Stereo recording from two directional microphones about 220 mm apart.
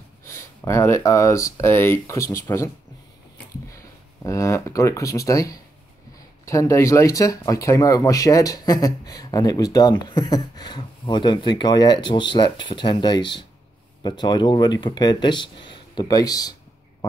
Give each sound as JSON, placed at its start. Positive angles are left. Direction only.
{"t": 0.2, "sound": "speech", "side_deg": 10}
{"t": 3.7, "sound": "speech", "side_deg": 15}